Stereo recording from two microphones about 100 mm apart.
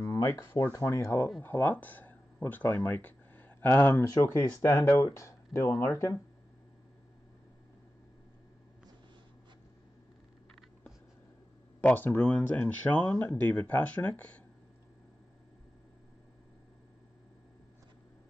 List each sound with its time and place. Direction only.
0.0 s speech: 35° left (ahead or behind)
11.8 s speech: 15° left (ahead or behind)